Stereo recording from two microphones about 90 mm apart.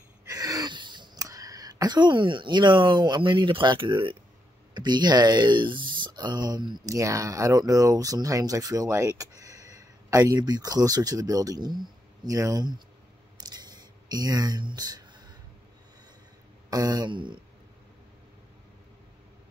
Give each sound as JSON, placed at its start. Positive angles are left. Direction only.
{"t": 0.3, "sound": "a sound", "side_deg": -45}
{"t": 1.1, "sound": "speech", "side_deg": -40}
{"t": 4.7, "sound": "speech", "side_deg": -55}
{"t": 6.9, "sound": "speech", "side_deg": -35}
{"t": 12.4, "sound": "speech", "side_deg": -40}
{"t": 13.4, "sound": "a sound", "side_deg": -50}
{"t": 16.7, "sound": "speech", "side_deg": -50}